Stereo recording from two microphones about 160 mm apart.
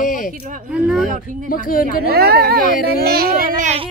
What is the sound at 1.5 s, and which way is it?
Speech, 60° left (ahead or behind).